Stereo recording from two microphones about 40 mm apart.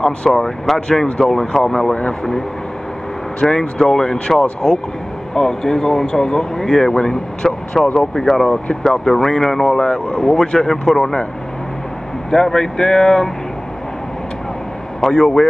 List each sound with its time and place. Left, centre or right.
0.3 s speech: centre
3.3 s speech: centre
12.3 s speech: centre
15.0 s speech: centre